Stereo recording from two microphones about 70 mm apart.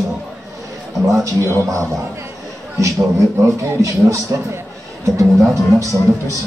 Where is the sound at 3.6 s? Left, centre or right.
Right.